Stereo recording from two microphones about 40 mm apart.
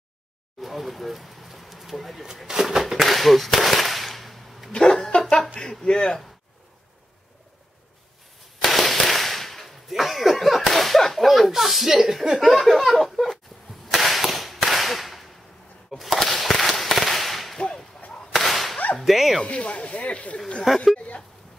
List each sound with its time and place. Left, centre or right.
0.6 s a sound: centre
2.3 s speech: centre
4.7 s chuckle: centre
5.6 s a man's voice: centre
8.5 s firecracker: centre
12.4 s laughter: centre
13.9 s whip: centre
15.9 s firecracker: centre
18.3 s whip: centre
18.9 s laughter: centre
19.4 s speech: left
20.6 s laughter: centre